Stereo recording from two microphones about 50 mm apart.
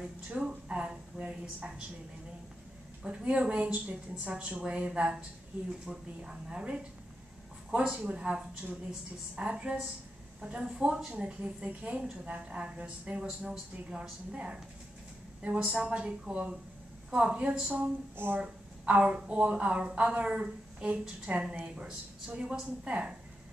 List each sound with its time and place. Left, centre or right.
0.3 s a woman's voice: right
3.0 s a woman's voice: right
7.7 s speech: right
8.3 s a woman's voice: centre
18.1 s speech: right
18.4 s a woman's voice: right